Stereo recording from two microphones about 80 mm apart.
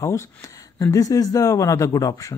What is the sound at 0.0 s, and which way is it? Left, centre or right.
Speech, left.